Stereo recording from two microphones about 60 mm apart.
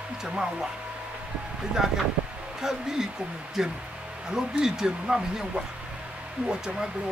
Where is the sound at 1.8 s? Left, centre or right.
Centre.